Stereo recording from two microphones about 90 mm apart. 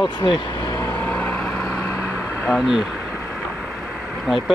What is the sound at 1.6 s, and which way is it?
Vehicle, 30° left (ahead or behind).